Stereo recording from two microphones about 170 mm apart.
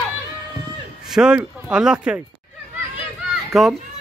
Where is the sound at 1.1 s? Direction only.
5° right (ahead or behind).